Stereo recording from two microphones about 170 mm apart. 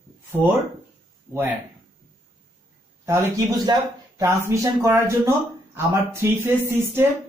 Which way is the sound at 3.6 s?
20° right (ahead or behind).